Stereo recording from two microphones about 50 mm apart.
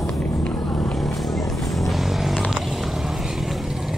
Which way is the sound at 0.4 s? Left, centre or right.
Left.